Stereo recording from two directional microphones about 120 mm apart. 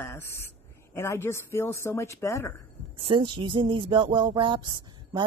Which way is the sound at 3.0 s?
45° right (ahead or behind).